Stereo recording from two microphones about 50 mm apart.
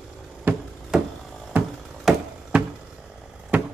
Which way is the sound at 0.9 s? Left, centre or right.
Centre.